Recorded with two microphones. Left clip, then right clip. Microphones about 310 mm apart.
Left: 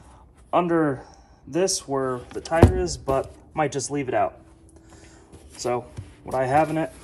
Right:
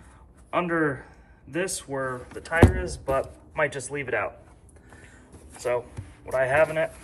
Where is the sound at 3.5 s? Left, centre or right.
Centre.